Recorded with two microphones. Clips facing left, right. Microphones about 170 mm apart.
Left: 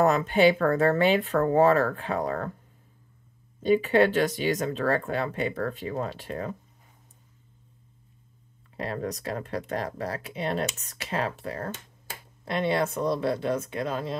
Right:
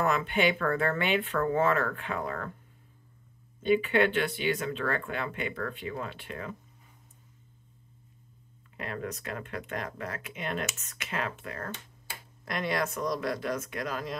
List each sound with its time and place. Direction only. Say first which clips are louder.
0.0 s speech: left 6 dB; 40° left (ahead or behind)
3.6 s speech: left 4 dB; 40° left (ahead or behind)
8.7 s speech: left 5 dB; 35° left (ahead or behind)
12.4 s speech: left 5 dB; 25° left (ahead or behind)